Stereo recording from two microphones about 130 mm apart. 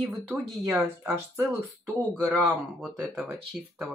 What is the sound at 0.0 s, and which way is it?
Speech, centre (ahead or behind).